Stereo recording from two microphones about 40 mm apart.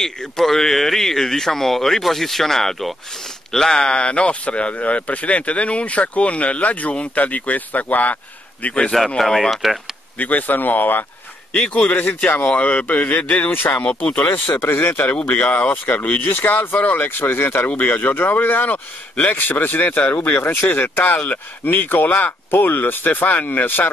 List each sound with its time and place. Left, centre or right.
0.0 s speech: centre; by 8.9 s left
9.2 s speech: centre
10.1 s speech: left
11.5 s speech: left
13.7 s speech: left
14.4 s speech: left
15.3 s speech: left
15.7 s speech: left
17.0 s speech: left
20.0 s speech: left
20.2 s speech: left